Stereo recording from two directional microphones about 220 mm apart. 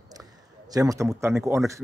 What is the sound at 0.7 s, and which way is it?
A man's voice, 15° right (ahead or behind).